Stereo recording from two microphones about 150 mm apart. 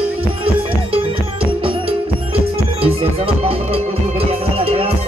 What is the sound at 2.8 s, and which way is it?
Music, 40° right (ahead or behind).